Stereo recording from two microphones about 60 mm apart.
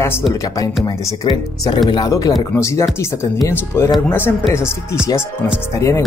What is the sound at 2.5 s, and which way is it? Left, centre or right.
Speech, left.